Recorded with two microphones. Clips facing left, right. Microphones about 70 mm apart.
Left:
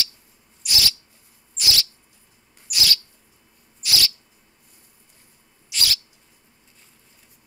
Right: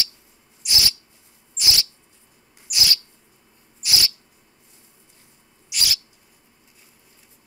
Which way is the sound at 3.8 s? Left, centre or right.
Right.